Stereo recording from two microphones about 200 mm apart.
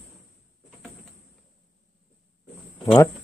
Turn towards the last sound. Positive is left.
turn(degrees=20)  # may be behind; listen again after turning